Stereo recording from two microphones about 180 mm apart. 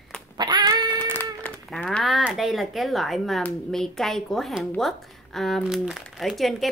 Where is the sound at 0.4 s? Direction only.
25° right (ahead or behind).